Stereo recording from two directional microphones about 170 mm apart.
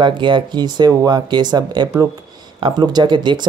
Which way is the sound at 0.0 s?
30° right (ahead or behind).